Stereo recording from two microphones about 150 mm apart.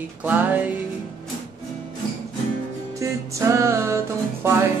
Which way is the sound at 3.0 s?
20° right (ahead or behind).